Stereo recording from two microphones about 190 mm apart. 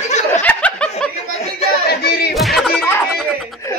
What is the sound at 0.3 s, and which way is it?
Snicker, 5° left (ahead or behind).